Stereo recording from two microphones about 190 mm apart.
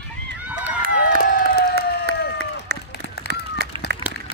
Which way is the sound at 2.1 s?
60° right (ahead or behind).